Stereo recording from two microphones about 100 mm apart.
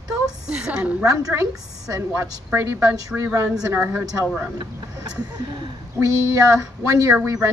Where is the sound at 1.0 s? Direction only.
35° right (ahead or behind).